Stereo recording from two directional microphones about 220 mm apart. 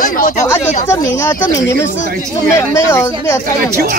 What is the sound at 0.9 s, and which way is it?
Speech, 10° left (ahead or behind).